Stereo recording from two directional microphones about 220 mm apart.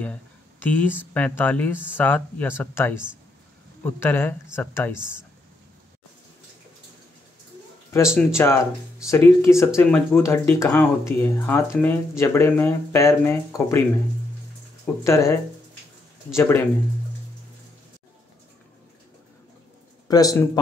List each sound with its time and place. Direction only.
0.0 s a sound: 5° left (ahead or behind)
1.1 s speech: 5° left (ahead or behind)
8.1 s speech: 5° right (ahead or behind)
9.0 s speech: 10° left (ahead or behind)
15.0 s speech: 15° left (ahead or behind)
16.3 s speech: 10° left (ahead or behind)
20.1 s speech: 15° left (ahead or behind)